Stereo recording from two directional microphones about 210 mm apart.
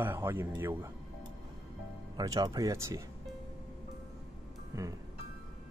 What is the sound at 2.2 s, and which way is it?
Speech, 20° right (ahead or behind).